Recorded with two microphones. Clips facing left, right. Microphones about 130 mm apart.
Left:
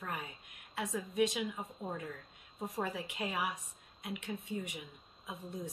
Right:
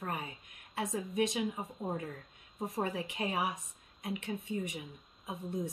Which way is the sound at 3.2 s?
30° right (ahead or behind).